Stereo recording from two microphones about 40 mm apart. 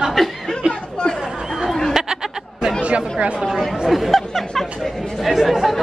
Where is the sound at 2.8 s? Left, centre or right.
Right.